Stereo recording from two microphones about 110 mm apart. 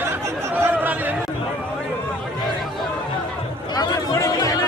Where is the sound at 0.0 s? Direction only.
20° right (ahead or behind).